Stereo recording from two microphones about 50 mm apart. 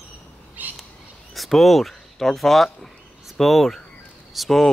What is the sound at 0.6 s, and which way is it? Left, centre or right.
Bird, right.